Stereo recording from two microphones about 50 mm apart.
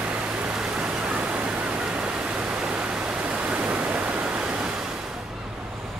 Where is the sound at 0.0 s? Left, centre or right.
Right.